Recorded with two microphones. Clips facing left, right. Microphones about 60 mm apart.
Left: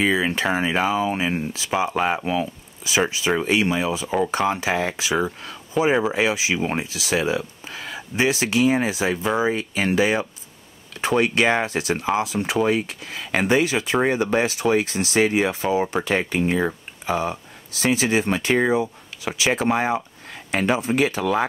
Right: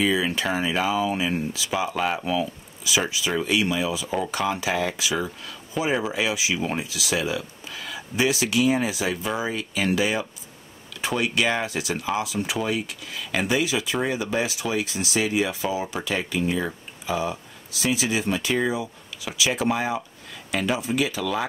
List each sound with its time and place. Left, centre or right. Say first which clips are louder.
0.0 s speech: left 2 dB; left